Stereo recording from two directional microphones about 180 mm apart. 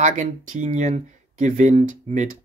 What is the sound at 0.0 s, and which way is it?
Speech, 45° right (ahead or behind).